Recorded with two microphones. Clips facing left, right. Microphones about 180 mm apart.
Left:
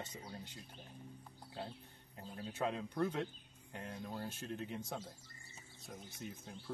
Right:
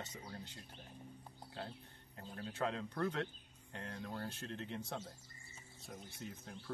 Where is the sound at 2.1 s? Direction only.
15° left (ahead or behind).